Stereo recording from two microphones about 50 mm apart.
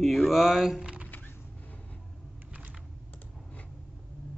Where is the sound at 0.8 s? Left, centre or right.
Right.